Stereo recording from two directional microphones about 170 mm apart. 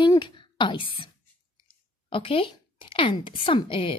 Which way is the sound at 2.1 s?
30° left (ahead or behind).